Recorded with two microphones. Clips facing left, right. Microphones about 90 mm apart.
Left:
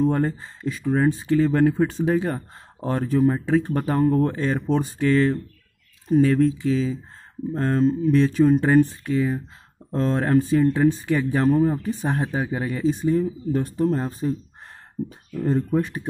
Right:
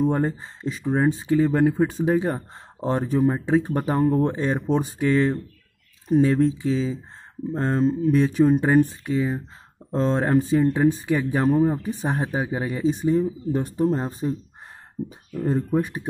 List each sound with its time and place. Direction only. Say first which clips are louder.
0.0 s speech: left 1 dB; 20° right (ahead or behind)
15.3 s speech: left 1 dB; 10° right (ahead or behind)